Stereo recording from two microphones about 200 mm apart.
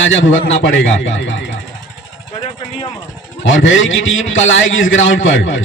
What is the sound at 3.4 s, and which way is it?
A man's voice, 70° left (ahead or behind).